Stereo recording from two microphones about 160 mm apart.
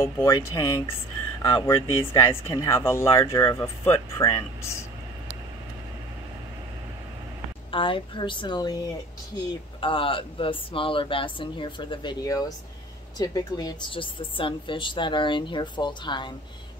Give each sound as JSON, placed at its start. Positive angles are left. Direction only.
{"t": 0.0, "sound": "speech", "side_deg": 15}
{"t": 7.7, "sound": "speech", "side_deg": 35}